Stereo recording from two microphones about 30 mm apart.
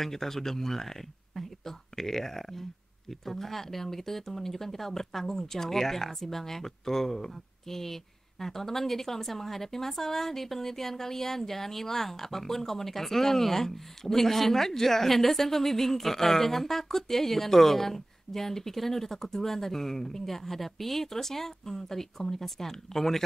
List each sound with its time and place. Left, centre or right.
0.0 s speech: centre